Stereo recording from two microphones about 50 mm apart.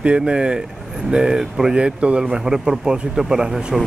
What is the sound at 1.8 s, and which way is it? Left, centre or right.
Speech, right.